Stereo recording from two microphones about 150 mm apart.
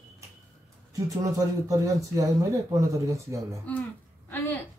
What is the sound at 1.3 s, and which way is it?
Speech, 20° right (ahead or behind).